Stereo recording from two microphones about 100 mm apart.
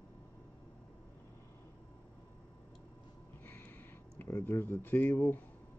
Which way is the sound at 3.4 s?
20° left (ahead or behind).